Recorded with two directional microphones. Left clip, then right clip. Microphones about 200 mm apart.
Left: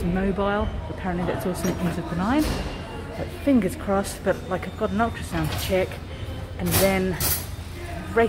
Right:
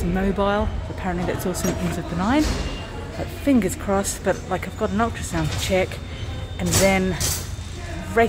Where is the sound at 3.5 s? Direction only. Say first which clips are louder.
Right 1 dB; 15° right (ahead or behind).